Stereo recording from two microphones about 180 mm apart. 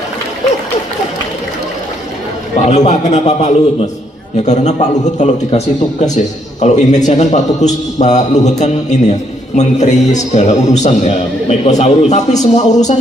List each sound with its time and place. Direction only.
2.6 s a man's voice: 40° left (ahead or behind)